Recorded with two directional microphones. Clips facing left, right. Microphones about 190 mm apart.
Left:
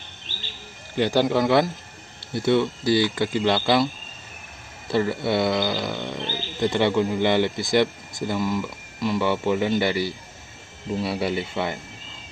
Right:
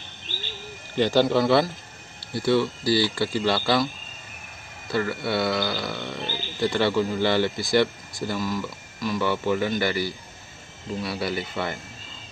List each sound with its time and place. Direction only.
0.9 s speech: 15° left (ahead or behind)
4.9 s speech: 20° left (ahead or behind)